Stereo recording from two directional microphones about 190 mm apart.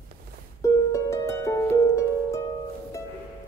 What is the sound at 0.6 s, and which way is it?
Harp, 15° left (ahead or behind).